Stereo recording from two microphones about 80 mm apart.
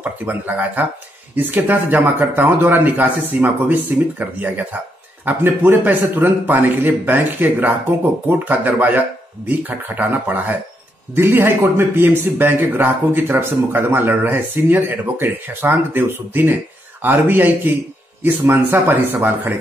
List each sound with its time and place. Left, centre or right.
0.0 s a man's voice: right